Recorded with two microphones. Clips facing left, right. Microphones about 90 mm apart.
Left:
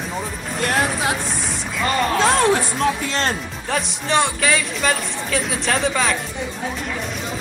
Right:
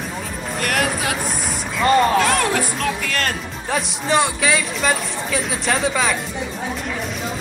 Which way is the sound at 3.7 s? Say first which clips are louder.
Right 1 dB; centre (ahead or behind).